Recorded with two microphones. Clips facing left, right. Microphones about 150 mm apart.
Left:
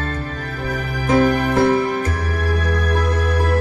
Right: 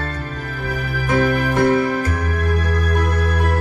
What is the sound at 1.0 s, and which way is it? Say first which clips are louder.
Music: left 3 dB; 25° left (ahead or behind).